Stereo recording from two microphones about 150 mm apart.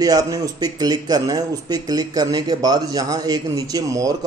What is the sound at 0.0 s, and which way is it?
Speech, 25° right (ahead or behind).